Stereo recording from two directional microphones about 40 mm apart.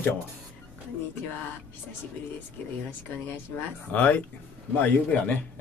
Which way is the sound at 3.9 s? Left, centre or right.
Left.